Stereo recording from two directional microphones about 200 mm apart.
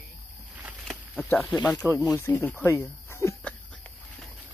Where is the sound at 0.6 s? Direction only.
5° right (ahead or behind).